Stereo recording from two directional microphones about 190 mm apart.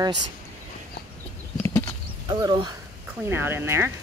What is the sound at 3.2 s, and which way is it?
Speech, 10° right (ahead or behind).